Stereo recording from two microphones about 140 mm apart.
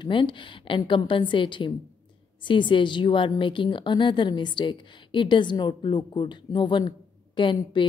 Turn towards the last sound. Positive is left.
turn(degrees=35)  # may be behind; listen again after turning